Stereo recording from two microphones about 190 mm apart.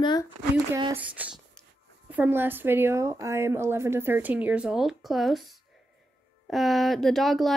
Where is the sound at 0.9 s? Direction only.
10° right (ahead or behind).